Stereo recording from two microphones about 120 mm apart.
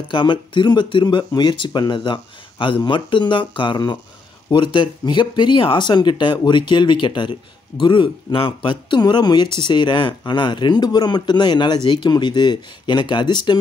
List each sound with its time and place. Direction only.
0.1 s speech: 40° left (ahead or behind)